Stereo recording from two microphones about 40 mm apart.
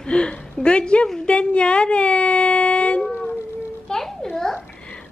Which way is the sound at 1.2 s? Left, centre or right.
Left.